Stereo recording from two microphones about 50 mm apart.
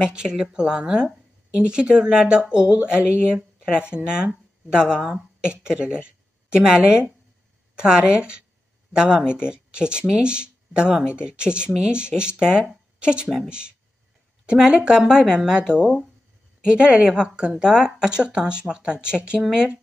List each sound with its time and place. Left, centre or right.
0.0 s a woman's voice: centre